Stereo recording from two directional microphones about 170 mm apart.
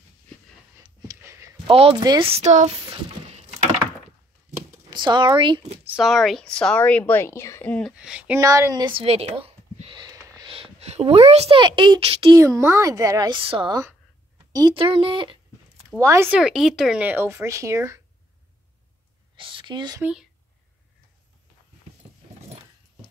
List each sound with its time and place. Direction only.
1.0 s a sound: 15° right (ahead or behind)
1.7 s speech: 35° right (ahead or behind)
4.6 s speech: 25° right (ahead or behind)
5.9 s a woman's voice: centre (ahead or behind)
8.0 s a woman's voice: 5° right (ahead or behind); by 12.4 s 35° right (ahead or behind)
12.4 s speech: 20° right (ahead or behind)
16.0 s speech: 15° right (ahead or behind)
16.3 s speech: centre (ahead or behind)
19.3 s a sound: 30° right (ahead or behind)
20.0 s speech: 5° right (ahead or behind)